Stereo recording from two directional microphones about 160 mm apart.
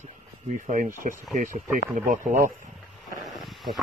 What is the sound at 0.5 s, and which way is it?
Speech, 55° right (ahead or behind).